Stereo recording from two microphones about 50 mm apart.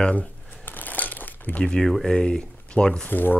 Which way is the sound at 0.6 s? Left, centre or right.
Left.